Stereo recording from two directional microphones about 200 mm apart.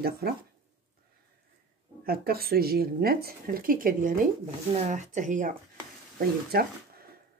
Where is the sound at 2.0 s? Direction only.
50° right (ahead or behind).